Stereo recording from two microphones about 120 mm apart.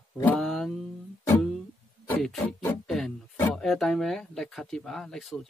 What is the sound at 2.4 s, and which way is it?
Music, 15° left (ahead or behind).